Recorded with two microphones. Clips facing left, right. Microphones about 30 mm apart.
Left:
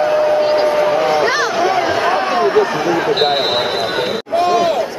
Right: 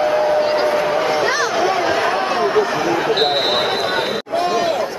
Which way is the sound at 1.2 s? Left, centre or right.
Centre.